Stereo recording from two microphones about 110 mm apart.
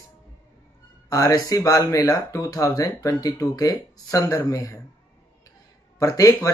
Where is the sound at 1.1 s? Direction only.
30° left (ahead or behind).